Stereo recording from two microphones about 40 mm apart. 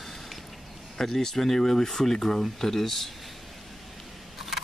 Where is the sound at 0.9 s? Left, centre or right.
Centre.